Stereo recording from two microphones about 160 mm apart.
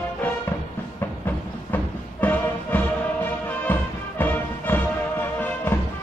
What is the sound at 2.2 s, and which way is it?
Music, 10° left (ahead or behind).